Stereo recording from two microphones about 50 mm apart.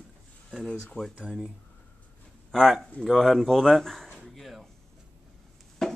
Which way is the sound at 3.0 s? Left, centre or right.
Centre.